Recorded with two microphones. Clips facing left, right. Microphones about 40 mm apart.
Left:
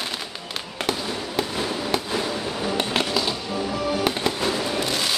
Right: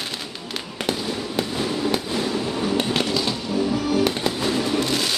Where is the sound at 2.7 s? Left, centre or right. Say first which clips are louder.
Even; centre.